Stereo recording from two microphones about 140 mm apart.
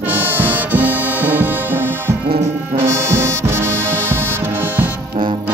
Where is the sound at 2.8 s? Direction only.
20° right (ahead or behind).